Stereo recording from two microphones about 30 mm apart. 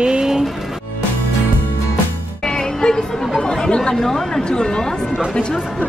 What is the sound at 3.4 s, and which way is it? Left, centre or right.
Chatter, left.